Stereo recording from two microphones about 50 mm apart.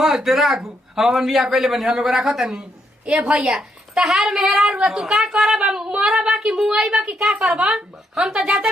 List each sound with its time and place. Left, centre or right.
0.0 s a man's voice: centre
3.1 s a woman's voice: right
3.4 s a man's voice: centre